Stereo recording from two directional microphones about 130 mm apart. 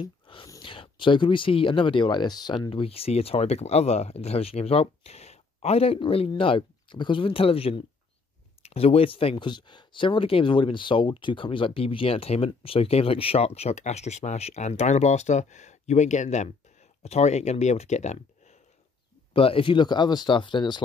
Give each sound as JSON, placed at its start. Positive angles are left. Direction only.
{"t": 0.0, "sound": "whispering", "side_deg": 40}
{"t": 0.6, "sound": "speech", "side_deg": 40}
{"t": 19.3, "sound": "speech", "side_deg": 45}